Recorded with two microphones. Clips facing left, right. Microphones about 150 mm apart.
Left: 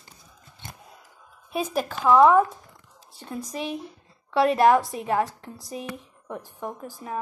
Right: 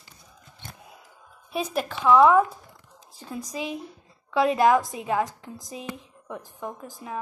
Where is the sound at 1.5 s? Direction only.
Centre (ahead or behind).